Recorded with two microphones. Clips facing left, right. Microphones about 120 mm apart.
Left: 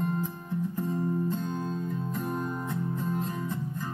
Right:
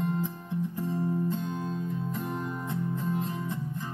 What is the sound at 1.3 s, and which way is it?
Music, 45° left (ahead or behind).